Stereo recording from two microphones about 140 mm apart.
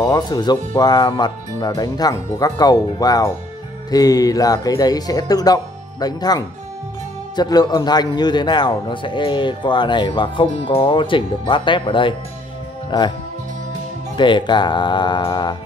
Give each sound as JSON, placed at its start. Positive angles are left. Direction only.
{"t": 0.0, "sound": "a man's voice", "side_deg": 30}
{"t": 14.1, "sound": "a man's voice", "side_deg": 35}